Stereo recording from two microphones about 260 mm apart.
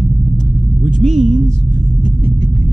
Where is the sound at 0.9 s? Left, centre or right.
Right.